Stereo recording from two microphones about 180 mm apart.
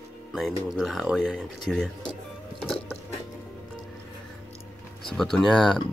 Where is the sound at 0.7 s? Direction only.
Centre (ahead or behind).